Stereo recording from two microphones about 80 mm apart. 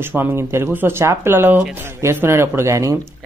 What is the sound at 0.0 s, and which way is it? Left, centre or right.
Speech, right.